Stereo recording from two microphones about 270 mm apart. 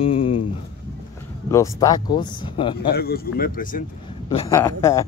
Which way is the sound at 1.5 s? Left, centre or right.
Centre.